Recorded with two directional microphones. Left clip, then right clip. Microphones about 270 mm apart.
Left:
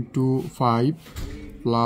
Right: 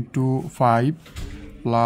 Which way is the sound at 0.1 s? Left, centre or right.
Right.